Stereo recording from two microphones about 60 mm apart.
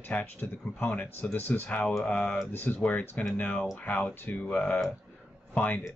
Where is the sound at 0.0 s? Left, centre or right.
Left.